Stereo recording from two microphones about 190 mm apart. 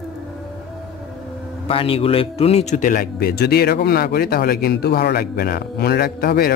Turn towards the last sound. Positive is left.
turn(degrees=50)  # may be behind; listen again after turning